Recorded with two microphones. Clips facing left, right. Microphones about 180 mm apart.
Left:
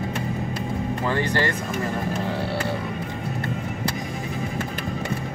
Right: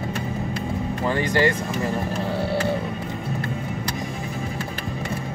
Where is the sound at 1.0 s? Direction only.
15° right (ahead or behind).